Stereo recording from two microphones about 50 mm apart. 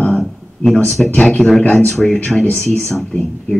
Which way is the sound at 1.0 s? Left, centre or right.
Centre.